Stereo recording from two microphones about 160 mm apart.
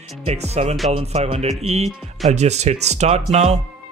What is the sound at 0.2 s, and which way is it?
Speech, 40° right (ahead or behind).